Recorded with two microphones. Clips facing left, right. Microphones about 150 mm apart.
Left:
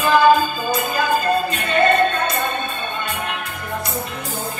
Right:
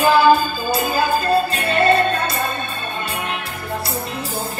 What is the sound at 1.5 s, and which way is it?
Music, 35° right (ahead or behind).